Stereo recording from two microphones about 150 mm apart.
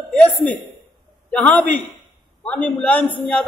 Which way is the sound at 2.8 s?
10° left (ahead or behind).